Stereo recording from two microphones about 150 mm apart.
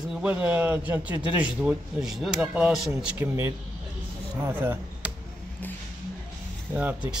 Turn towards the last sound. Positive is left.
turn(degrees=-10)  # may be behind; listen again after turning